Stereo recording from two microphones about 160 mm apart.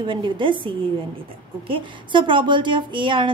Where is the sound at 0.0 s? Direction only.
30° right (ahead or behind).